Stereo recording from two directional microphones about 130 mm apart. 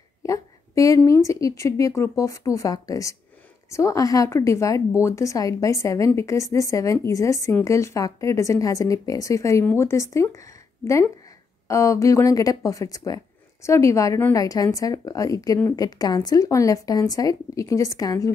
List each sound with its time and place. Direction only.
0.2 s speech: 25° left (ahead or behind)